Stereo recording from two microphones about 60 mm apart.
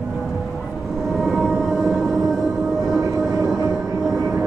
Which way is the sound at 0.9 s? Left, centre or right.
Centre.